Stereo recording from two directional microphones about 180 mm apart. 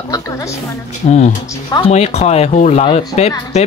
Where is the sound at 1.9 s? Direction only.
35° left (ahead or behind).